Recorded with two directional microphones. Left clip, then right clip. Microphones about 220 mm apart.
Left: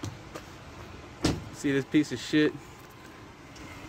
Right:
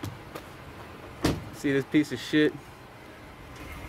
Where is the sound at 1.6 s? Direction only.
5° left (ahead or behind).